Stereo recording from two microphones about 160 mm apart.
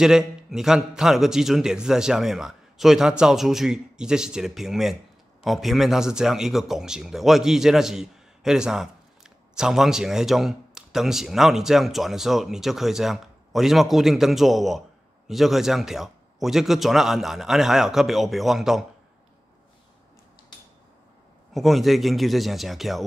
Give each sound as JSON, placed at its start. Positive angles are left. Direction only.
{"t": 0.0, "sound": "a man's voice", "side_deg": -5}
{"t": 21.5, "sound": "a man's voice", "side_deg": 0}